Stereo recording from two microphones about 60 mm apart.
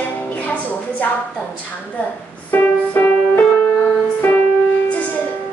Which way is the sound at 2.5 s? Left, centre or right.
Left.